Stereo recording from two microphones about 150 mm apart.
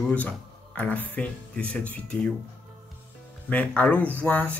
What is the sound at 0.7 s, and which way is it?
Speech, 10° left (ahead or behind).